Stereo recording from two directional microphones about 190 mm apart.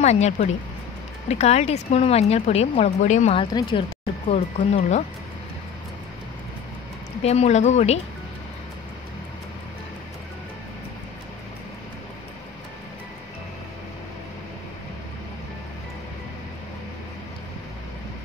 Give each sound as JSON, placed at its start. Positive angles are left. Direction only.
{"t": 0.0, "sound": "speech", "side_deg": 35}
{"t": 3.5, "sound": "speech", "side_deg": 25}
{"t": 4.3, "sound": "speech", "side_deg": 40}
{"t": 7.2, "sound": "speech", "side_deg": 35}